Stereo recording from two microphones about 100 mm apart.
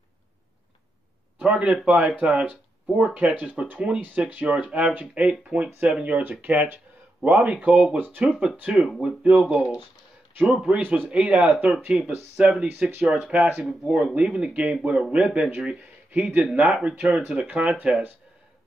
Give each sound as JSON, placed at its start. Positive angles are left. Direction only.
{"t": 1.4, "sound": "speech", "side_deg": -10}
{"t": 8.3, "sound": "speech", "side_deg": -5}